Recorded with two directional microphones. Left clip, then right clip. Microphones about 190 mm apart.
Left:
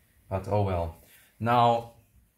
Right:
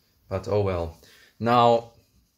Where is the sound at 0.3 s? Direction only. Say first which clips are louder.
Right 3 dB; 55° right (ahead or behind).